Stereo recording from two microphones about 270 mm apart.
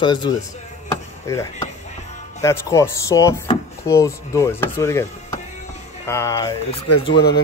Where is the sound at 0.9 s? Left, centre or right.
Centre.